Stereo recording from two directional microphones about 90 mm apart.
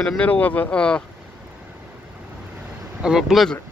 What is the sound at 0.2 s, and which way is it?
Speech, 15° left (ahead or behind).